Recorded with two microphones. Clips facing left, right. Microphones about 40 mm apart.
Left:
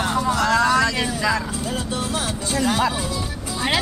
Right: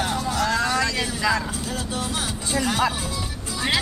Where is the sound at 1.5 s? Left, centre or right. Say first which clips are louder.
Left 3 dB; left.